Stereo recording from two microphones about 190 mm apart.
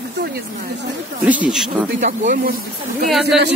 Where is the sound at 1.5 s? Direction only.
Centre (ahead or behind).